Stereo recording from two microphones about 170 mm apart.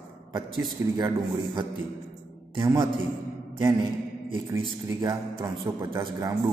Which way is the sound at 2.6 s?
25° right (ahead or behind).